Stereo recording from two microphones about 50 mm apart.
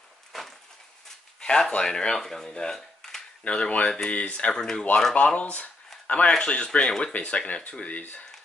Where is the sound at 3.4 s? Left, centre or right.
Left.